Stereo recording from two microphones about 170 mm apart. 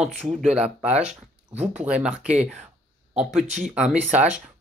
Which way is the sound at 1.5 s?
40° right (ahead or behind).